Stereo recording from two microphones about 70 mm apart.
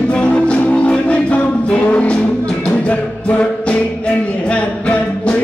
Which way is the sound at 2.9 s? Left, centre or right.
Centre.